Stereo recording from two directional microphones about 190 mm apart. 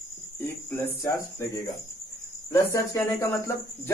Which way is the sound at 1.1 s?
15° left (ahead or behind).